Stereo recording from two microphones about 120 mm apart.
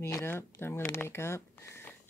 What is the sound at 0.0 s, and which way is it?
Speech, 20° left (ahead or behind).